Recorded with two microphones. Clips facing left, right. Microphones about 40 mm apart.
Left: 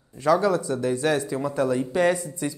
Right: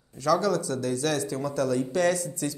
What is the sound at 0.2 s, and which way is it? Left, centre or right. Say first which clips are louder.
Speech: left 3 dB; left.